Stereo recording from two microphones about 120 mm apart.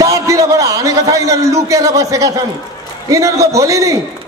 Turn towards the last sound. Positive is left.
turn(degrees=-25)  # may be behind; listen again after turning